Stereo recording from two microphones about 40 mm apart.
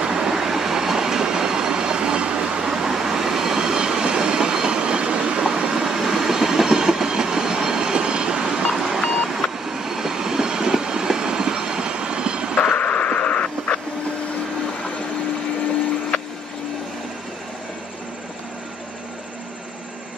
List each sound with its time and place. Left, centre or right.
0.0 s train: centre
8.7 s vehicle: centre
9.7 s train: centre
12.5 s a sound: left